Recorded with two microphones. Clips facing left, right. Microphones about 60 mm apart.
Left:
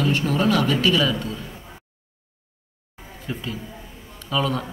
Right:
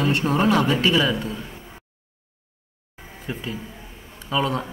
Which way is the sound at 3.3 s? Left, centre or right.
Right.